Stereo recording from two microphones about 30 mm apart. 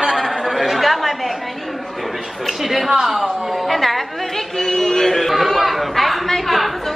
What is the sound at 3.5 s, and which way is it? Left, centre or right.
Speech, centre.